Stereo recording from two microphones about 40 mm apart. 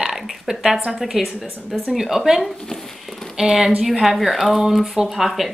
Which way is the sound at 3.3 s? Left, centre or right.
Centre.